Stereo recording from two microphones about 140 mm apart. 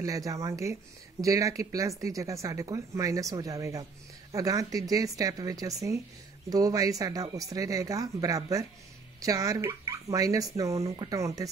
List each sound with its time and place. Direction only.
0.0 s speech: 25° right (ahead or behind)